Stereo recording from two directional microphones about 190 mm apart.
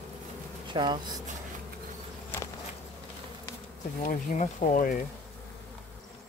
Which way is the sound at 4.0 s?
45° left (ahead or behind).